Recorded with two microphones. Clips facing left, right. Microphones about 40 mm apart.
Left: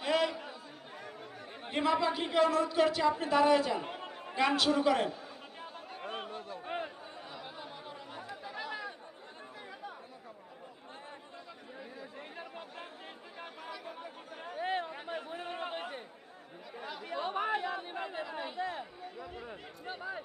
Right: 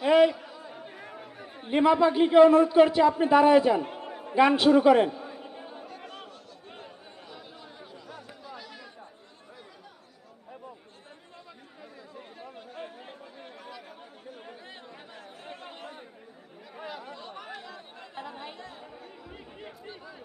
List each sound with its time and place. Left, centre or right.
0.0 s chatter: right
1.7 s a man's voice: right
3.8 s a sound: centre
4.4 s a man's voice: right
5.9 s a sound: left
8.1 s chatter: left
12.2 s chatter: centre
14.6 s chatter: left
14.9 s chatter: left
16.7 s chatter: centre
17.0 s chatter: left